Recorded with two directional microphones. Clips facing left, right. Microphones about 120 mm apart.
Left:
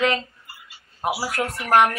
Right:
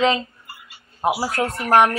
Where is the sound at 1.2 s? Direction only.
25° right (ahead or behind).